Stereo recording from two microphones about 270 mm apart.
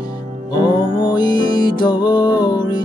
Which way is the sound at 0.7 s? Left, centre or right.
Centre.